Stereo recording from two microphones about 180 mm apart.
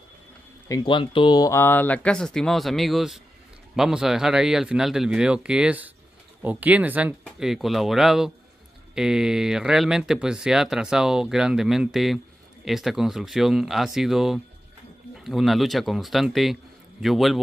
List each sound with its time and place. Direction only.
0.7 s speech: 25° left (ahead or behind); by 17.4 s centre (ahead or behind)